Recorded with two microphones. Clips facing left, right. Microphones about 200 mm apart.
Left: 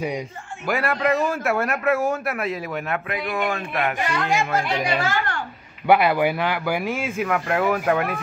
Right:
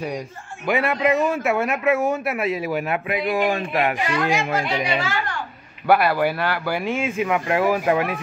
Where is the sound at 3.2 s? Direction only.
30° right (ahead or behind).